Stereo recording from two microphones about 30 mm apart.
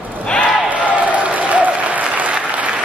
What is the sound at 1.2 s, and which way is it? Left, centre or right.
Applause, right.